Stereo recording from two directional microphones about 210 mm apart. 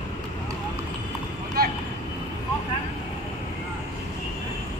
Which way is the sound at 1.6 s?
50° right (ahead or behind).